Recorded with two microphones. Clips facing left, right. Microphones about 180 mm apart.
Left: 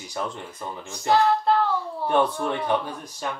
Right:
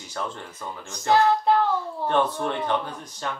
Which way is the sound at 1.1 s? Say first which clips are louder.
Right 1 dB; 15° right (ahead or behind).